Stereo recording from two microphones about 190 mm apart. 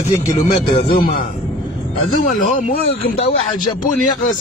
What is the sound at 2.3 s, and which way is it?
Speech, 45° left (ahead or behind).